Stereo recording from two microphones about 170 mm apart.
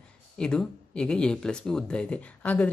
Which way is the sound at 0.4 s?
5° left (ahead or behind).